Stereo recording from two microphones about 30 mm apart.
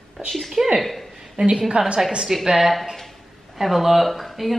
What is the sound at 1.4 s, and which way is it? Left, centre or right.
Speech, right.